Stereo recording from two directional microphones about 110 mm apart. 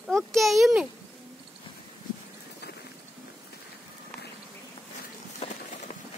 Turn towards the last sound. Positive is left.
turn(degrees=70)  # may be behind; listen again after turning